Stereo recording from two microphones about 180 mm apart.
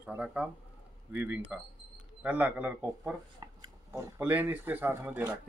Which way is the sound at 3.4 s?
25° right (ahead or behind).